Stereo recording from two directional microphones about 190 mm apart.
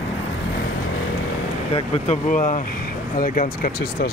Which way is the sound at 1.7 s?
35° left (ahead or behind).